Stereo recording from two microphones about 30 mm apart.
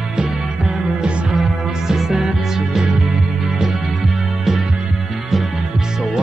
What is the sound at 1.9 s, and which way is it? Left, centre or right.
Music, centre.